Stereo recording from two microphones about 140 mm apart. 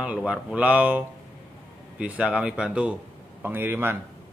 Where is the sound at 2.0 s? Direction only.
10° right (ahead or behind).